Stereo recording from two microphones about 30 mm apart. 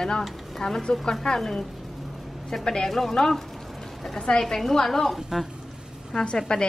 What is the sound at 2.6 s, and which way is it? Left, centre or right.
Speech, left.